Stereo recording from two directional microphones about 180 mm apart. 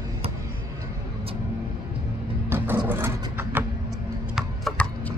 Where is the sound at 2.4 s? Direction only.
10° right (ahead or behind).